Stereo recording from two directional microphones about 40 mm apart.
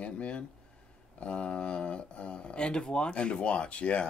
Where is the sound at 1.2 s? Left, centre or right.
Left.